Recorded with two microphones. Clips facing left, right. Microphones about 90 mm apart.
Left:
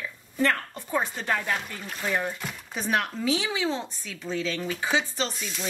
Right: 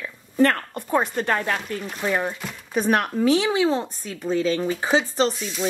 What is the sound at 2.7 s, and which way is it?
Speech, 50° right (ahead or behind).